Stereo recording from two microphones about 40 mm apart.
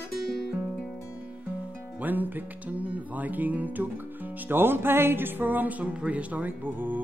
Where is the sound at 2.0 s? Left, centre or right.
Right.